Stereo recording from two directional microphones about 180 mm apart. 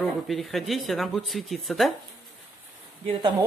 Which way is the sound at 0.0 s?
Centre (ahead or behind).